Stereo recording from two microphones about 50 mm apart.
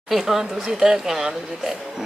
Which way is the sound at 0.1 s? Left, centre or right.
Centre.